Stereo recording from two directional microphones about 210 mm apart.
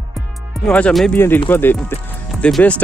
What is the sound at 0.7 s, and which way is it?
Speech, 5° left (ahead or behind).